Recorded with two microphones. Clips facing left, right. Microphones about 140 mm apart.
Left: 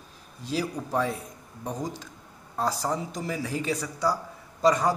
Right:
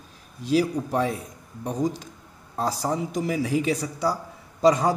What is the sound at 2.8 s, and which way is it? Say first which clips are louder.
Speech: right 4 dB; 15° right (ahead or behind).